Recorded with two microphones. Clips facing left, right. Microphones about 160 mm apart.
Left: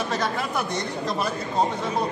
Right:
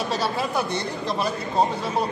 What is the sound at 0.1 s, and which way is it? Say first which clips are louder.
Speech: right 1 dB; 10° right (ahead or behind).